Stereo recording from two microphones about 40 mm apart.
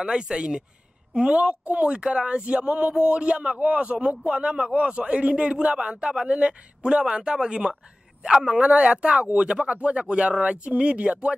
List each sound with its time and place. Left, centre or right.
0.0 s speech: centre
1.3 s speech: right
8.6 s speech: right